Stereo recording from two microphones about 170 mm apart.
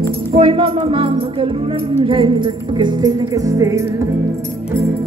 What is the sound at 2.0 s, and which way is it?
Music, 30° right (ahead or behind).